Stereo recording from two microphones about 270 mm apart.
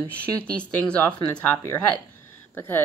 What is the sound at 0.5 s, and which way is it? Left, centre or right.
A woman's voice, centre.